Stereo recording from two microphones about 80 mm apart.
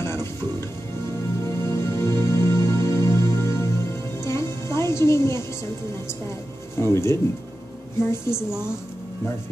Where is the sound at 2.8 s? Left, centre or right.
Left.